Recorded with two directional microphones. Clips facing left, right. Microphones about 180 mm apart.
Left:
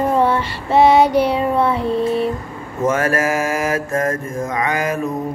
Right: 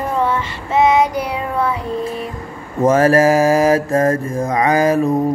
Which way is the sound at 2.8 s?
35° right (ahead or behind).